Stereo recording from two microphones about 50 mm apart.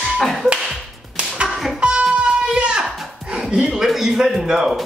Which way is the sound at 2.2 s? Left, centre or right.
Centre.